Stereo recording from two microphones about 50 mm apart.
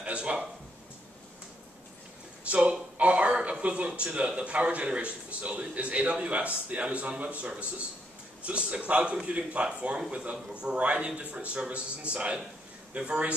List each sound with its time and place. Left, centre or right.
0.0 s speech: right
2.4 s a sound: right
3.0 s a man's voice: right